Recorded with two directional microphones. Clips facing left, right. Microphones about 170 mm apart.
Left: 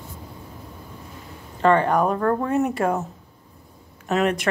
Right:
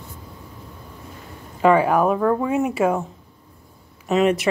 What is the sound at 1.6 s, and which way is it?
Speech, 5° right (ahead or behind).